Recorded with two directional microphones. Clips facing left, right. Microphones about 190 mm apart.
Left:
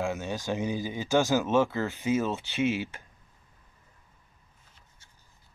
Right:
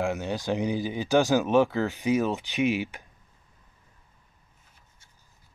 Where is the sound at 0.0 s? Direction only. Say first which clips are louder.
Right 3 dB; 15° right (ahead or behind).